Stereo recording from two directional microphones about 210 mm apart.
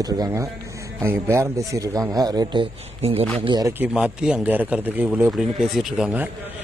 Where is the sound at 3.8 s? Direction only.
5° right (ahead or behind).